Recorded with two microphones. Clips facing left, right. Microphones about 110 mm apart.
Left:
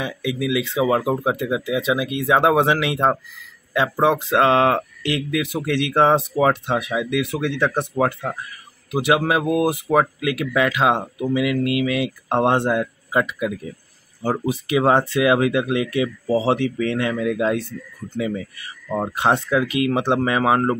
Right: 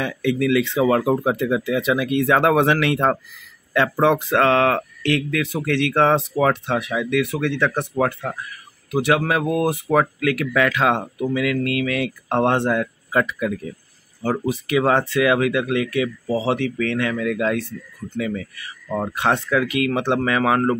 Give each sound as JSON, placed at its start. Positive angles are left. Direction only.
{"t": 0.0, "sound": "speech", "side_deg": 10}